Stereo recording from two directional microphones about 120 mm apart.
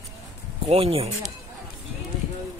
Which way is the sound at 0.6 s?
55° right (ahead or behind).